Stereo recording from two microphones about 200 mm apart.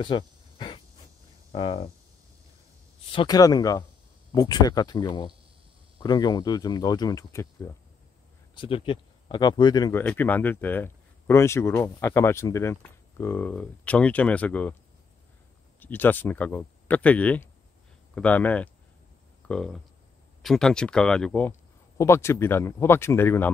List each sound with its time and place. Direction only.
0.0 s a sound: 25° left (ahead or behind)
1.5 s speech: 25° left (ahead or behind)
3.1 s speech: 20° left (ahead or behind)
8.5 s speech: 25° left (ahead or behind); by 14.8 s 5° left (ahead or behind)
15.8 s speech: 10° left (ahead or behind)